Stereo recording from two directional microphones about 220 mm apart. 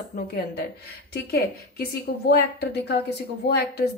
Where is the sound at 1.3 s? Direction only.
45° left (ahead or behind).